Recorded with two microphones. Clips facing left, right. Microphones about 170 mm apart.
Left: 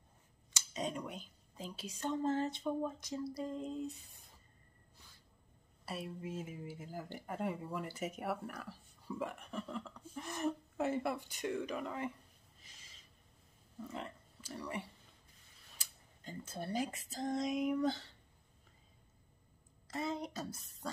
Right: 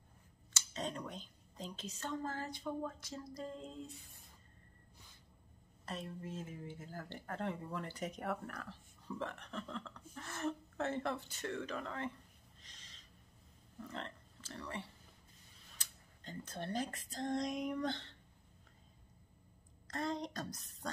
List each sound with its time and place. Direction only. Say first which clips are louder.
0.5 s a woman's voice: left 2 dB; 10° left (ahead or behind)
5.9 s speech: left 2 dB; 10° left (ahead or behind)
12.6 s gasp: even; 5° left (ahead or behind)
13.7 s speech: left 2 dB; 5° left (ahead or behind)
19.9 s speech: even; 5° left (ahead or behind)